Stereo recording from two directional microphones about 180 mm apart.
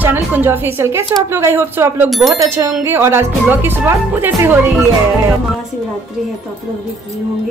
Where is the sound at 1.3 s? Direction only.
15° right (ahead or behind).